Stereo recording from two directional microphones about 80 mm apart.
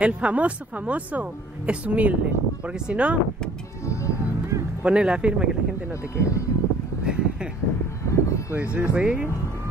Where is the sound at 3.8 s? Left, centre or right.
Left.